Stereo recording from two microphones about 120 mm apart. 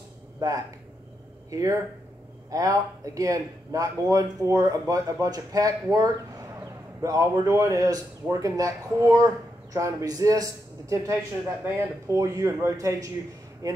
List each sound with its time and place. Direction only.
1.5 s speech: 25° right (ahead or behind)